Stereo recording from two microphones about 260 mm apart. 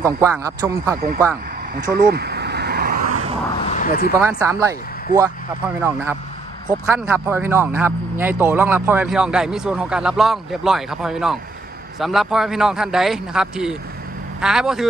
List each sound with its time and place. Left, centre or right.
0.0 s speech: centre
1.8 s vehicle: right
3.5 s a sound: left
4.2 s speech: centre